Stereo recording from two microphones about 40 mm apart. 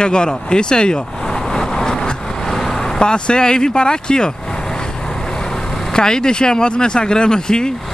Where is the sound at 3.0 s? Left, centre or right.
Left.